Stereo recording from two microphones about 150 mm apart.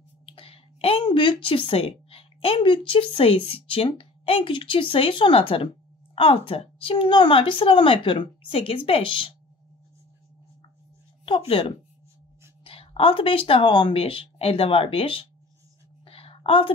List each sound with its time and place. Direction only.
0.3 s a woman's voice: 40° left (ahead or behind)
11.2 s a woman's voice: 35° left (ahead or behind)
16.1 s a sound: 40° left (ahead or behind)